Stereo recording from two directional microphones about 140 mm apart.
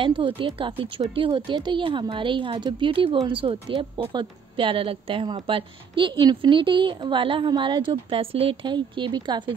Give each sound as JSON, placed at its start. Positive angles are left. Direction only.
{"t": 0.0, "sound": "a woman's voice", "side_deg": -35}